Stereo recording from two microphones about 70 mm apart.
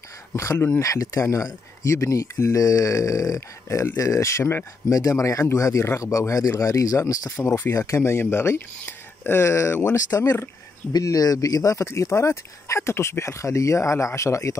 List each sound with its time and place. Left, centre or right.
0.4 s speech: left
4.8 s speech: left
9.9 s speech: left
11.8 s speech: left